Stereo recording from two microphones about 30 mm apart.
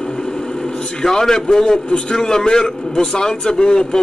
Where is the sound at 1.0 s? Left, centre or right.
Left.